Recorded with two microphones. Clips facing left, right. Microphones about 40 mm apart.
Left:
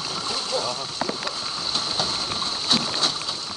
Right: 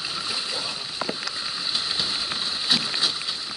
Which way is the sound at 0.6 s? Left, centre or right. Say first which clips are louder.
Left 3 dB; left.